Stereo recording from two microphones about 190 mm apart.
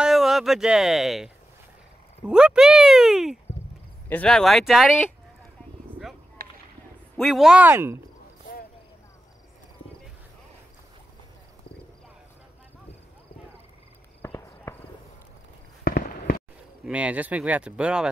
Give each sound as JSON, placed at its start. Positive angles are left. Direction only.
{"t": 0.0, "sound": "speech", "side_deg": 0}
{"t": 6.4, "sound": "a sound", "side_deg": -50}
{"t": 7.2, "sound": "speech", "side_deg": 0}
{"t": 14.2, "sound": "a sound", "side_deg": 15}
{"t": 15.8, "sound": "fireworks", "side_deg": 50}
{"t": 16.8, "sound": "speech", "side_deg": -5}